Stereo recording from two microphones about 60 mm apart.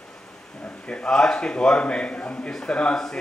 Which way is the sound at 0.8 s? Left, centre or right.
Centre.